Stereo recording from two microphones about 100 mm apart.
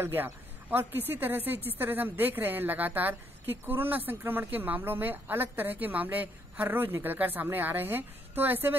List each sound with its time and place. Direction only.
0.0 s speech: 20° right (ahead or behind)